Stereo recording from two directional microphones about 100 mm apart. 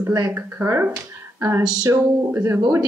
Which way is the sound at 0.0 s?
35° right (ahead or behind).